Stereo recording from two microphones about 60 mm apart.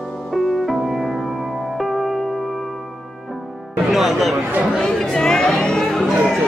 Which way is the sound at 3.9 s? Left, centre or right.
Centre.